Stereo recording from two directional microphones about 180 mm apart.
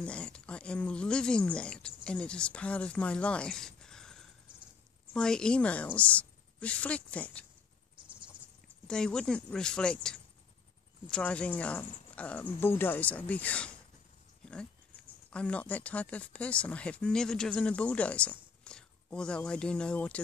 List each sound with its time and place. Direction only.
0.0 s speech: 5° left (ahead or behind)
8.8 s speech: 5° left (ahead or behind)
14.4 s dog: 5° left (ahead or behind)
15.2 s speech: 5° left (ahead or behind)